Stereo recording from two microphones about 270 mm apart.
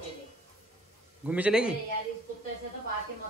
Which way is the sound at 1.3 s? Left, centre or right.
Centre.